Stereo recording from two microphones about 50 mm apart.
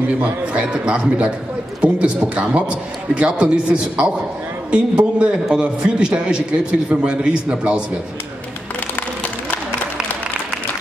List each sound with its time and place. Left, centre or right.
0.5 s a man's voice: right